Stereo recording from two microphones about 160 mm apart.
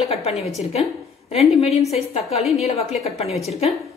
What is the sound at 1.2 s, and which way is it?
A woman's voice, 40° left (ahead or behind).